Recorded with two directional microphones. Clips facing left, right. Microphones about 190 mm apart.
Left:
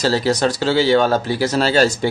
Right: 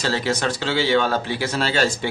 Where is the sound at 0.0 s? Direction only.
35° left (ahead or behind).